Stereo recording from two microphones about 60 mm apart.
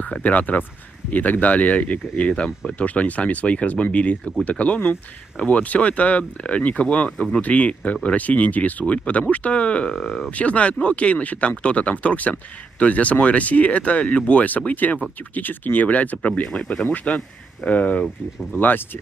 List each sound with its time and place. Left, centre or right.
0.0 s speech: left
9.9 s speech: centre
10.3 s speech: left